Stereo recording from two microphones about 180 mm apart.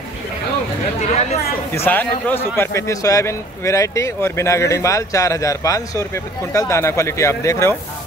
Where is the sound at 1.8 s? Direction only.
10° left (ahead or behind).